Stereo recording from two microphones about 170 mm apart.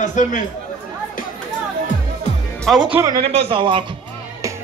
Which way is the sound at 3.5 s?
30° right (ahead or behind).